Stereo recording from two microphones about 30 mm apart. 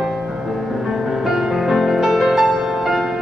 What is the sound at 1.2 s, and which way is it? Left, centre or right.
Music, centre.